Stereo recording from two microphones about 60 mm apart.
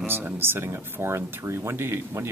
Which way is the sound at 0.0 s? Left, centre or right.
Right.